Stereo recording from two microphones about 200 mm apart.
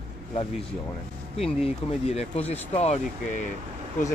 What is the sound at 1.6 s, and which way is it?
Speech, 30° left (ahead or behind).